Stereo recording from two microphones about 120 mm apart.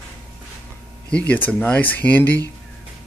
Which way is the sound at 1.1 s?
15° left (ahead or behind).